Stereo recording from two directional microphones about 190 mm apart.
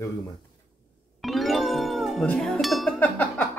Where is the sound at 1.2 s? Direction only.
Centre (ahead or behind).